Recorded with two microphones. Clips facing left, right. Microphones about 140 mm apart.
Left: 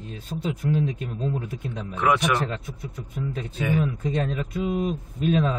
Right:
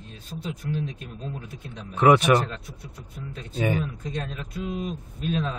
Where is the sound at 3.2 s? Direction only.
90° left.